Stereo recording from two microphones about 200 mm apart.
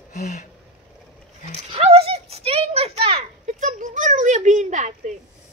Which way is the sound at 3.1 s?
40° right (ahead or behind).